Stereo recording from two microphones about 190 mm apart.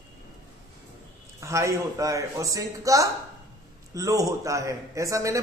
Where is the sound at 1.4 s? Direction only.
15° right (ahead or behind).